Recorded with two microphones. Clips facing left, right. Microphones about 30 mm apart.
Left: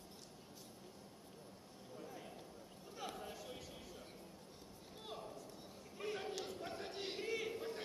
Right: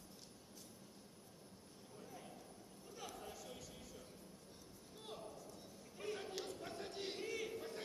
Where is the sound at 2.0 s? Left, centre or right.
Centre.